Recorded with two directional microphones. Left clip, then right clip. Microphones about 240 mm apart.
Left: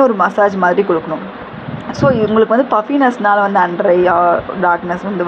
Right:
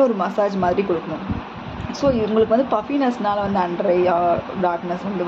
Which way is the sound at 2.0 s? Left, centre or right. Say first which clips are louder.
Left 6 dB; centre.